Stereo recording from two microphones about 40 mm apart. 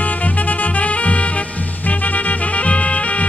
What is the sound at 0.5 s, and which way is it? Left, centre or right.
Music, left.